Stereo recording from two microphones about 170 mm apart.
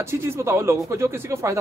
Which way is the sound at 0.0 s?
15° right (ahead or behind).